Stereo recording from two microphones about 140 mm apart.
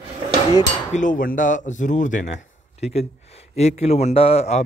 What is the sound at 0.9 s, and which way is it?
Speech, 70° left (ahead or behind).